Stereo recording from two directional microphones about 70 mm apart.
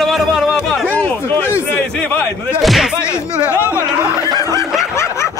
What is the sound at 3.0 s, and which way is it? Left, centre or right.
Speech, left.